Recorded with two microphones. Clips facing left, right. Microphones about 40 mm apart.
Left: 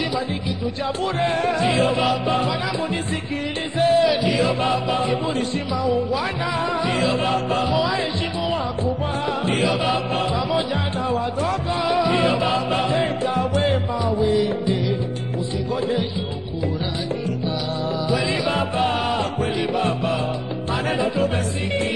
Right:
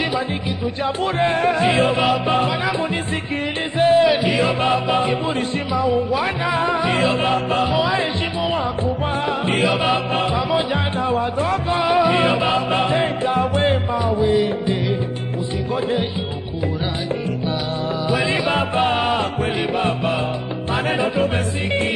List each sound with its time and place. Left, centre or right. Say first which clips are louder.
0.8 s music: right 3 dB; right
3.7 s music: right 3 dB; right
18.1 s music: right 3 dB; right